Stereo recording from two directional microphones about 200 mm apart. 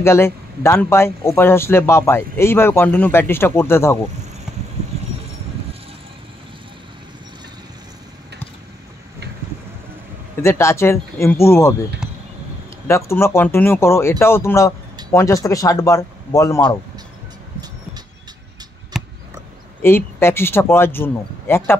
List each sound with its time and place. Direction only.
0.0 s speech: 10° left (ahead or behind)
10.4 s speech: 15° left (ahead or behind)
12.0 s a sound: 5° right (ahead or behind)
12.8 s speech: 15° left (ahead or behind)
18.9 s a sound: centre (ahead or behind)
19.8 s speech: 10° left (ahead or behind)